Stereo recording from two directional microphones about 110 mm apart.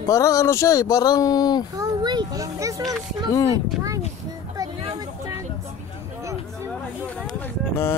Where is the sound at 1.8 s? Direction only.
40° right (ahead or behind).